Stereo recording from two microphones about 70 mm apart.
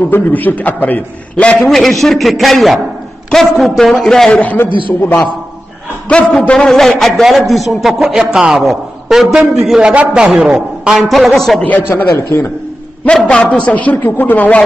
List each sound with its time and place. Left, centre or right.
0.1 s a man's voice: left
1.8 s a man's voice: centre
4.3 s a man's voice: centre
6.0 s a man's voice: centre
11.9 s a man's voice: left
13.0 s a man's voice: centre